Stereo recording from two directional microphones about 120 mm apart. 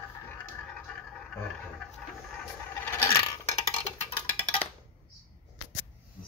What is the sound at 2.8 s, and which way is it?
Coin, 20° left (ahead or behind).